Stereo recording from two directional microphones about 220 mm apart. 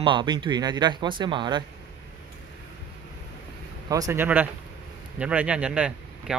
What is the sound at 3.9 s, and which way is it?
Speech, 15° right (ahead or behind).